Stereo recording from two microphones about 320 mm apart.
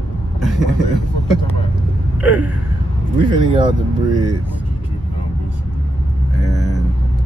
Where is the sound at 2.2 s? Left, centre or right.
Right.